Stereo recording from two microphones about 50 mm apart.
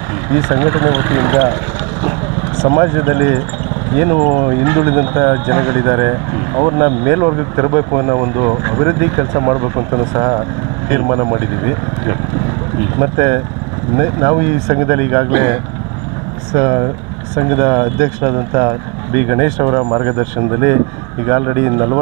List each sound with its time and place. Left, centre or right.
0.3 s speech: centre
10.9 s speech: centre
21.5 s speech: centre